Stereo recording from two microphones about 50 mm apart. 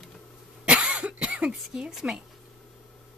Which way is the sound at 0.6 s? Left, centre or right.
Right.